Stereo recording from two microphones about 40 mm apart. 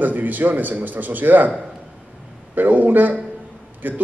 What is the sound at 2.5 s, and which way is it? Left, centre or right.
A man's voice, right.